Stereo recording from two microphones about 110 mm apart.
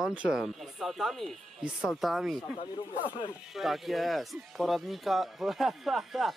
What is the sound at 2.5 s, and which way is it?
Speech, 50° left (ahead or behind).